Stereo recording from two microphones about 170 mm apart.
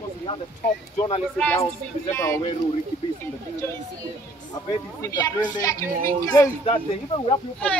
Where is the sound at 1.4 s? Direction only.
15° left (ahead or behind).